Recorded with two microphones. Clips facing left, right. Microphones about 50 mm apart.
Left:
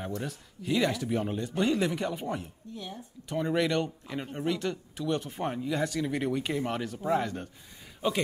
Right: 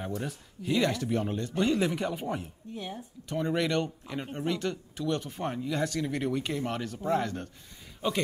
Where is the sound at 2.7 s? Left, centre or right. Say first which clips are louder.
Right 3 dB; right.